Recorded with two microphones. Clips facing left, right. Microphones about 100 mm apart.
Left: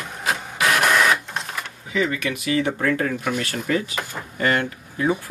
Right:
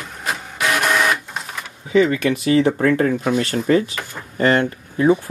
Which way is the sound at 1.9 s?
35° right (ahead or behind).